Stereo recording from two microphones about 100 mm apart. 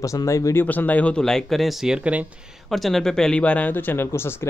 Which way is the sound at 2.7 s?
Centre (ahead or behind).